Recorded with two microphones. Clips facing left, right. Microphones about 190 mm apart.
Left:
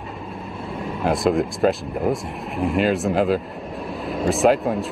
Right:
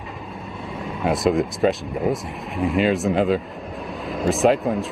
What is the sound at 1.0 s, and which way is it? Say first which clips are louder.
Speech: even; centre (ahead or behind).